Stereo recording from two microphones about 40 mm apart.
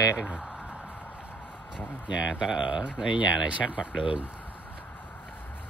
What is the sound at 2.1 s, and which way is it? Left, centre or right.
Speech, right.